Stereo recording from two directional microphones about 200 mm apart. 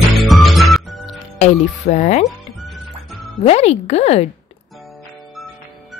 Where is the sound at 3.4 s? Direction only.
30° left (ahead or behind).